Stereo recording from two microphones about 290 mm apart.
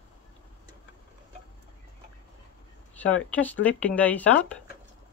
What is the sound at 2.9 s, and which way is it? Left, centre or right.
Speech, centre.